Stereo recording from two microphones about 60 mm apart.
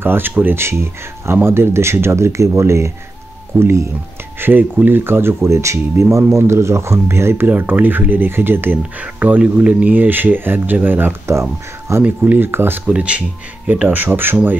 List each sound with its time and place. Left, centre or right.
0.0 s speech: right
4.4 s speech: right
7.4 s speech: right
9.0 s speech: right
11.9 s speech: right
12.3 s speech: right
12.8 s speech: right